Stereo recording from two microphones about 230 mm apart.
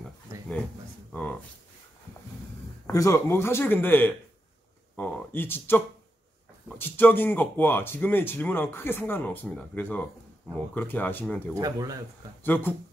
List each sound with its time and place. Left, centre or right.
1.1 s a sound: centre
2.9 s speech: centre
4.9 s a sound: centre
6.8 s speech: centre
11.6 s speech: centre
12.4 s speech: centre